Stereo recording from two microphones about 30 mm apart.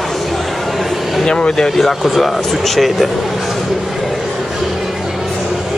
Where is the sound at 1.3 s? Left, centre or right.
Left.